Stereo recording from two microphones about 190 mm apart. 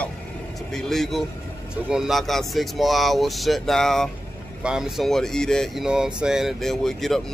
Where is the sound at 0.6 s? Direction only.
Centre (ahead or behind).